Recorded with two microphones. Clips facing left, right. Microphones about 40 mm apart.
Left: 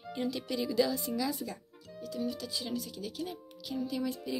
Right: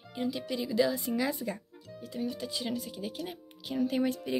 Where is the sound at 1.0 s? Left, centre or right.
Right.